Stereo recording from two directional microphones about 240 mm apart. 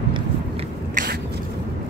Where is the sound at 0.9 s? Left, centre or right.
Right.